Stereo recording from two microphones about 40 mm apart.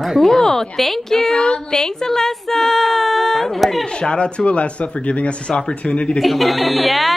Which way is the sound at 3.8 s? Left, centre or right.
Left.